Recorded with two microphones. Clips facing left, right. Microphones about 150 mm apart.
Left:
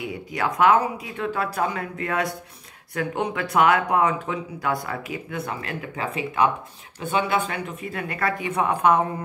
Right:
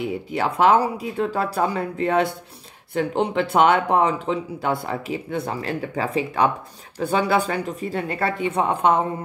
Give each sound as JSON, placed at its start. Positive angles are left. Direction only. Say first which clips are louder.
{"t": 0.0, "sound": "speech", "louder": "right 3 dB", "side_deg": -30}